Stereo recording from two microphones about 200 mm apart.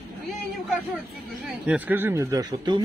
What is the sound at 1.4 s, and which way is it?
Speech, 5° right (ahead or behind).